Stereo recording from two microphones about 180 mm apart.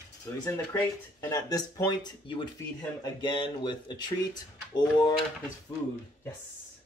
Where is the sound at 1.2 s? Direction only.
20° left (ahead or behind).